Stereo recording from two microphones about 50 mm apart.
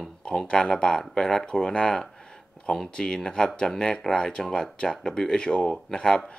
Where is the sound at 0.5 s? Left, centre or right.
Centre.